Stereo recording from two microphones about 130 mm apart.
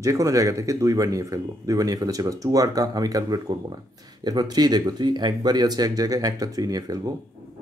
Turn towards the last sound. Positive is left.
turn(degrees=-30)  # may be behind; listen again after turning